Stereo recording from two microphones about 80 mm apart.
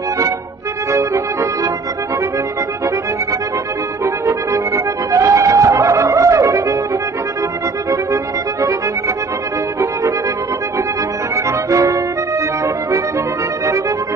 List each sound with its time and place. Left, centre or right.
0.9 s music: right
4.0 s accordion: right
11.7 s music: right